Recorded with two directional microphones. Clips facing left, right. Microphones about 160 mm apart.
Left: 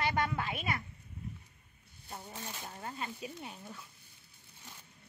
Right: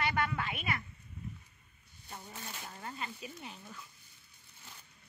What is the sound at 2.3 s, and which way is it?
Speech, 15° left (ahead or behind).